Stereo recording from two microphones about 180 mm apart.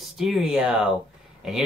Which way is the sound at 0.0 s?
Centre (ahead or behind).